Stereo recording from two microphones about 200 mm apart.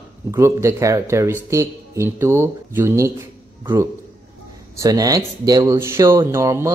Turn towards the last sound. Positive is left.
turn(degrees=-15)  # may be behind; listen again after turning